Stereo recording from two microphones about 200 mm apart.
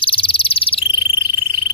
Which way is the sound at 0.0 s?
25° left (ahead or behind).